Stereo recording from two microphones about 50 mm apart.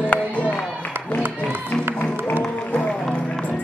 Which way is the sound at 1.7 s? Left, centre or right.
Centre.